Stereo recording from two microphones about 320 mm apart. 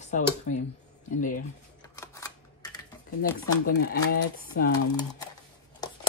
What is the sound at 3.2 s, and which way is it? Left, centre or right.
Speech, left.